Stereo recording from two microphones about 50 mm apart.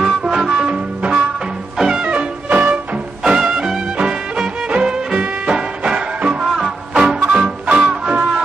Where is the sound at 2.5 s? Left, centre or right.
Right.